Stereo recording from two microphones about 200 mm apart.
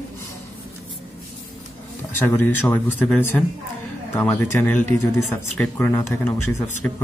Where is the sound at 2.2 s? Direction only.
10° left (ahead or behind).